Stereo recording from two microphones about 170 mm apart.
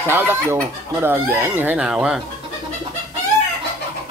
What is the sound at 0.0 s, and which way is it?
Speech, 10° right (ahead or behind).